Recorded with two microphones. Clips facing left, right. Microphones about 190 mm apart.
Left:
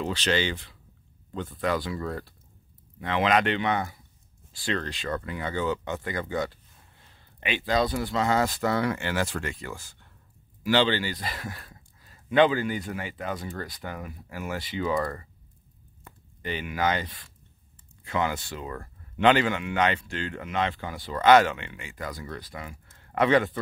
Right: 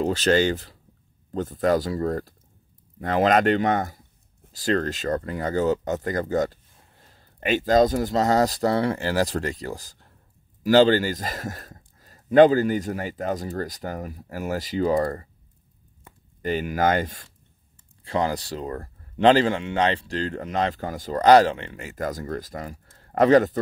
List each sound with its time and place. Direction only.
0.0 s speech: 45° right (ahead or behind)
16.4 s speech: 45° right (ahead or behind)
18.0 s speech: 35° right (ahead or behind)